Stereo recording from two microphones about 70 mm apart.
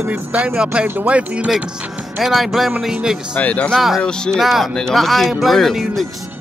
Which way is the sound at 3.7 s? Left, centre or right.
Centre.